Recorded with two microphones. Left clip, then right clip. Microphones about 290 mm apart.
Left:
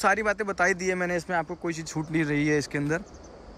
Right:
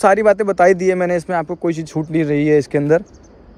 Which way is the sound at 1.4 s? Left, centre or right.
Right.